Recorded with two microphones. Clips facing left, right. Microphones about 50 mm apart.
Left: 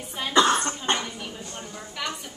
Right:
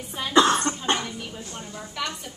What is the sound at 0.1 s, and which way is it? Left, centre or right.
Cough, centre.